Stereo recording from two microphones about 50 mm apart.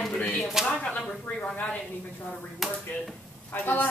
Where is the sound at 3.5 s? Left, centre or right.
Left.